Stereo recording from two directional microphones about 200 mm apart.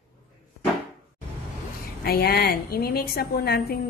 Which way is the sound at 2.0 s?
50° left (ahead or behind).